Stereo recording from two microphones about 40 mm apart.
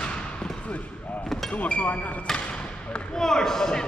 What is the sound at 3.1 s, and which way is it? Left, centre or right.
Speech, centre.